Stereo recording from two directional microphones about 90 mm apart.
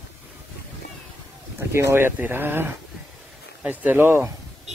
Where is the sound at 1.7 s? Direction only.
30° right (ahead or behind).